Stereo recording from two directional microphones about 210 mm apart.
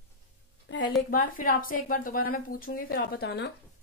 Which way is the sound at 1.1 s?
40° left (ahead or behind).